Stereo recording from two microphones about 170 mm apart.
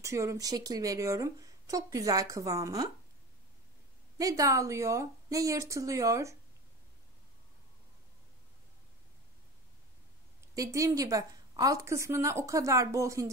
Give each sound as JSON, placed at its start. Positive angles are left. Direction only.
{"t": 0.0, "sound": "speech", "side_deg": -20}
{"t": 4.2, "sound": "speech", "side_deg": -20}
{"t": 10.5, "sound": "speech", "side_deg": -20}